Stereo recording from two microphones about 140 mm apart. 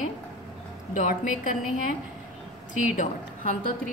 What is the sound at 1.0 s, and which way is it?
Speech, 70° left (ahead or behind).